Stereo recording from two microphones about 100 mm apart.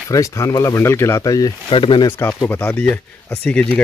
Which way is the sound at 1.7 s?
65° left (ahead or behind).